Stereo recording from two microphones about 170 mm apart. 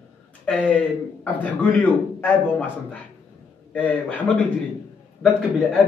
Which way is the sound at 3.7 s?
10° left (ahead or behind).